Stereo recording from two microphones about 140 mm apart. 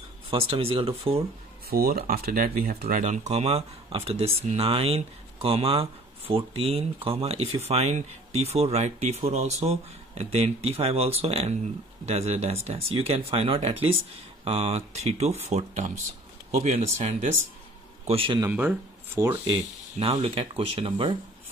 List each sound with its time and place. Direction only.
0.3 s speech: 40° right (ahead or behind)
1.7 s speech: 90° right
3.0 s speech: 55° right (ahead or behind)
18.0 s speech: 40° right (ahead or behind)
18.5 s speech: 10° right (ahead or behind)
19.5 s speech: 45° right (ahead or behind)